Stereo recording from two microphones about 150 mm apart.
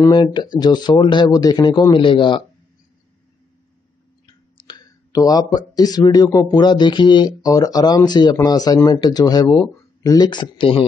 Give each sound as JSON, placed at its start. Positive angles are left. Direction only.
{"t": 0.1, "sound": "speech", "side_deg": 30}
{"t": 4.6, "sound": "speech", "side_deg": 30}